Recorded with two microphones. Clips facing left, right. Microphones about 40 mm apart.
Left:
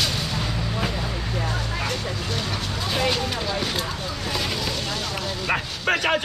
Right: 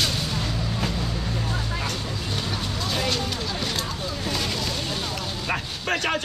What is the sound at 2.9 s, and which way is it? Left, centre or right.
Speech, centre.